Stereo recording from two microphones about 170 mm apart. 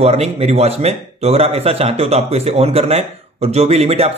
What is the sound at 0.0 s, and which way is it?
Speech, 35° right (ahead or behind).